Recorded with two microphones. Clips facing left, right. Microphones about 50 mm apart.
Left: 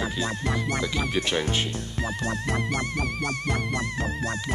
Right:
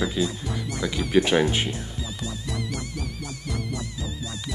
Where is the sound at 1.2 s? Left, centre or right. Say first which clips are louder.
Right 7 dB; centre.